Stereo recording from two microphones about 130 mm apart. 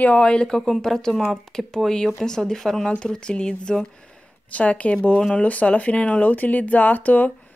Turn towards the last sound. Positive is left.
turn(degrees=10)  # may be behind; listen again after turning